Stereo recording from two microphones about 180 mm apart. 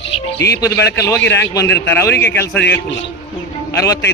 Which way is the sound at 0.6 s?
15° left (ahead or behind).